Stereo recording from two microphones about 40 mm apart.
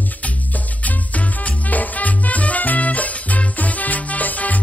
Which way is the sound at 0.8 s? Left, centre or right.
Left.